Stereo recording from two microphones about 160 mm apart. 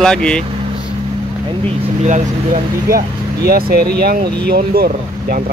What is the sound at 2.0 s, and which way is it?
Speech, 50° right (ahead or behind).